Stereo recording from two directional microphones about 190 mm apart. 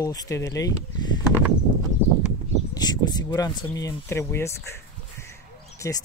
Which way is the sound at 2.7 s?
20° left (ahead or behind).